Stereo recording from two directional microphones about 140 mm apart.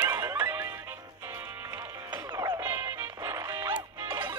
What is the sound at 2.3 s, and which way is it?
Music, 30° right (ahead or behind).